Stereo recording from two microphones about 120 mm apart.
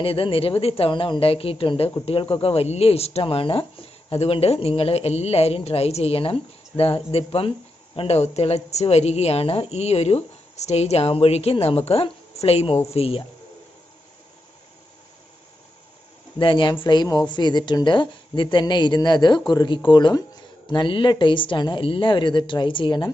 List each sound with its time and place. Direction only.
0.0 s speech: 50° left (ahead or behind)
16.3 s a woman's voice: 45° left (ahead or behind)